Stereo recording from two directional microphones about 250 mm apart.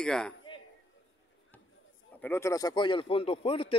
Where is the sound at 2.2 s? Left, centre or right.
Centre.